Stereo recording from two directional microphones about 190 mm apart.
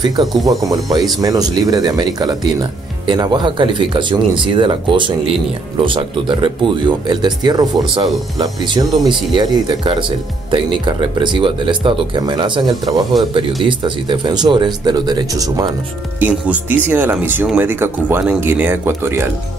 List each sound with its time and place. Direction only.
0.5 s speech: 20° right (ahead or behind)
16.2 s speech: 10° right (ahead or behind)